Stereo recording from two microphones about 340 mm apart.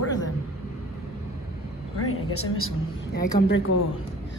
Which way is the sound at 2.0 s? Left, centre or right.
Left.